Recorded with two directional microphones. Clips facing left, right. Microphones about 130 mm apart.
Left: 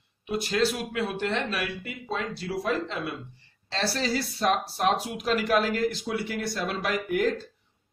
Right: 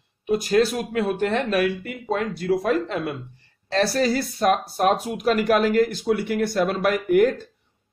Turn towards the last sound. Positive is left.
turn(degrees=-55)  # may be behind; listen again after turning